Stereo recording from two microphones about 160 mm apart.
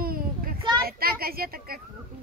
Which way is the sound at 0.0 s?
65° right (ahead or behind).